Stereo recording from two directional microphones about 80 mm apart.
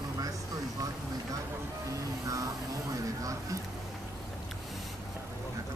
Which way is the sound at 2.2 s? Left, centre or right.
Right.